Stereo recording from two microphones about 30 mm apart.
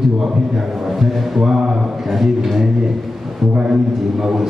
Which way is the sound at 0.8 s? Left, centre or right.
Centre.